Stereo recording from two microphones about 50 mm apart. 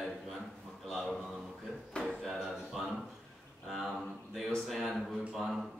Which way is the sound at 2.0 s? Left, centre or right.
Centre.